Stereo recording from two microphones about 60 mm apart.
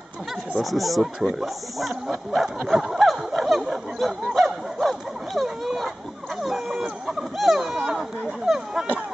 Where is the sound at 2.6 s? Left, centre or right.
Centre.